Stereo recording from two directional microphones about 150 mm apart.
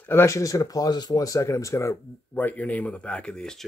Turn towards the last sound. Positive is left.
turn(degrees=5)  # may be behind; listen again after turning